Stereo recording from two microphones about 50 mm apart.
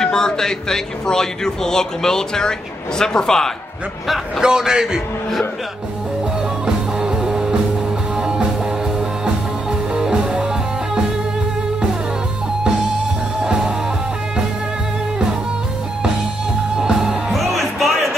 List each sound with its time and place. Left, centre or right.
0.0 s a man's voice: centre
4.4 s a man's voice: centre
6.6 s music: centre
13.4 s music: centre
16.7 s music: centre